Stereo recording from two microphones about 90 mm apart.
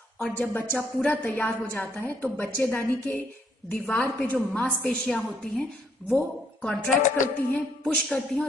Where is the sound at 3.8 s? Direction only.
5° left (ahead or behind).